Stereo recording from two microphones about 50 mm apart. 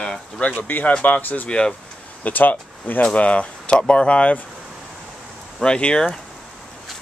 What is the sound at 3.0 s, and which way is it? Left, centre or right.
Speech, left.